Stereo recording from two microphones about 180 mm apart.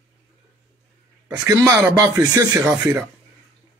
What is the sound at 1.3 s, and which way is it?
Speech, 20° right (ahead or behind).